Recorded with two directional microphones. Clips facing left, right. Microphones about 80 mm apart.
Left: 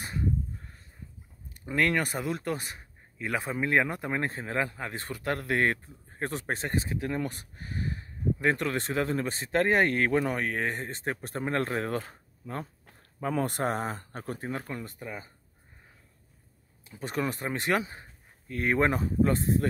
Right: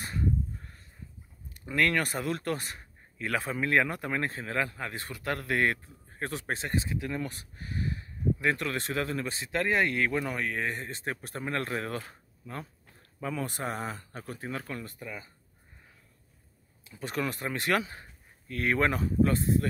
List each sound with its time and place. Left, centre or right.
1.5 s a man's voice: left
14.7 s speech: left
16.8 s speech: left